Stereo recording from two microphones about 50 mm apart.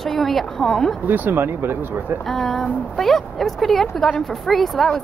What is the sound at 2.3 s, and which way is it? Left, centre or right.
A woman's voice, centre.